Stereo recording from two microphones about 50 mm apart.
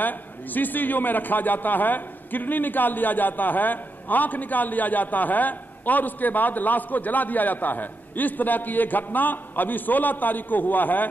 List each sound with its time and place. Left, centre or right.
0.0 s a man's voice: left